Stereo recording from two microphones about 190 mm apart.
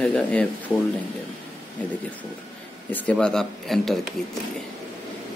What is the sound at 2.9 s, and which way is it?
Speech, 5° left (ahead or behind).